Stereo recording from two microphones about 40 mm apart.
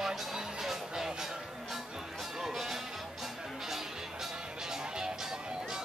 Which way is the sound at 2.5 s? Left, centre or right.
Centre.